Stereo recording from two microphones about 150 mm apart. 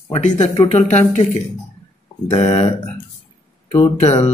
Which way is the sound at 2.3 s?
40° left (ahead or behind).